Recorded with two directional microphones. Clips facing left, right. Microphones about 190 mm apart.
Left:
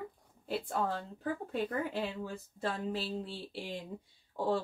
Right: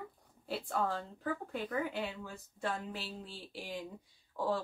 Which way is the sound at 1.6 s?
30° left (ahead or behind).